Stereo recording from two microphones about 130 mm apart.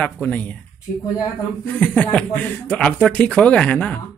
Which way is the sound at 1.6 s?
15° left (ahead or behind).